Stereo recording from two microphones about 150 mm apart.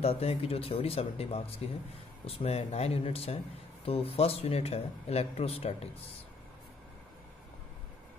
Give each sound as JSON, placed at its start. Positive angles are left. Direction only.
{"t": 0.0, "sound": "speech", "side_deg": 40}